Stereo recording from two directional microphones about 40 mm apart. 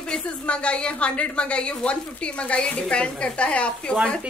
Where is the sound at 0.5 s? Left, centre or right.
Left.